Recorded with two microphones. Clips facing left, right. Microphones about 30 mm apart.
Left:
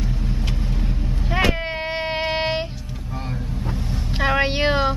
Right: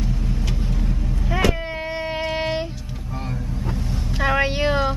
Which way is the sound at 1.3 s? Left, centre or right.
Left.